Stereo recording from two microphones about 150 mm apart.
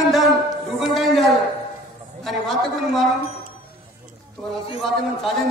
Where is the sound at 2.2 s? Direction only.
Centre (ahead or behind).